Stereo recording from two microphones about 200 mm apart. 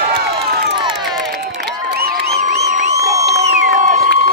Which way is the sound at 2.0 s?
50° right (ahead or behind).